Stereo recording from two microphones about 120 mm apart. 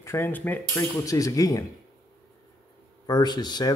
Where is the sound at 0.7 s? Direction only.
30° left (ahead or behind).